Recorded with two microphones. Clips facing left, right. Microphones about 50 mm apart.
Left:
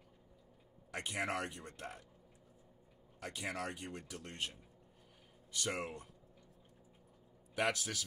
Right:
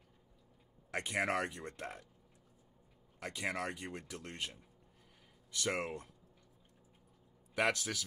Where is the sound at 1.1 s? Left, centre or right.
Right.